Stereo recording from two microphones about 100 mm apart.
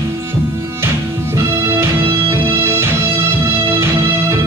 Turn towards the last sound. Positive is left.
turn(degrees=-25)  # may be behind; listen again after turning